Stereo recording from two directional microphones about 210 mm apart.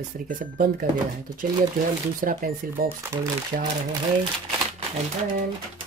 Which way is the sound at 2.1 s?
40° right (ahead or behind).